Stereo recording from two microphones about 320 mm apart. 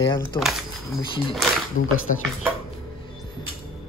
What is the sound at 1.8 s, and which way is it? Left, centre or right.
Speech, left.